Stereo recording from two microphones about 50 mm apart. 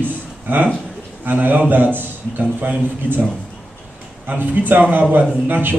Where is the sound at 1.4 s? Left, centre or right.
Right.